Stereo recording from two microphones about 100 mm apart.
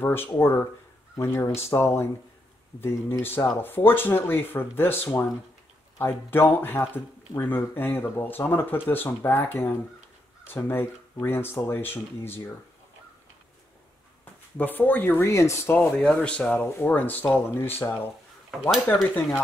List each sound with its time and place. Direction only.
0.0 s speech: 25° left (ahead or behind)
14.6 s speech: 15° left (ahead or behind)